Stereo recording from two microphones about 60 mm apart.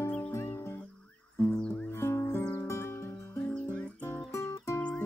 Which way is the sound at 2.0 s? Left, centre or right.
Left.